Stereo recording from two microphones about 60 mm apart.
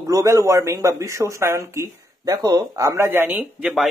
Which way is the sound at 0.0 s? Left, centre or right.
Right.